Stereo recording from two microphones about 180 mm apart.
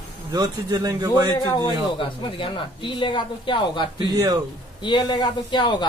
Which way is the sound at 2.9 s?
25° left (ahead or behind).